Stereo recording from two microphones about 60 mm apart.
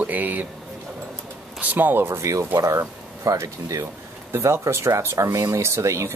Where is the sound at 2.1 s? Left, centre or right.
Right.